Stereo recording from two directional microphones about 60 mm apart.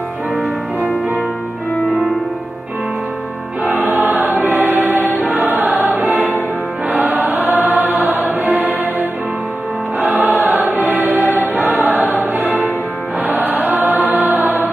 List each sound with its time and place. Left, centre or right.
3.9 s choir: right
9.9 s choir: right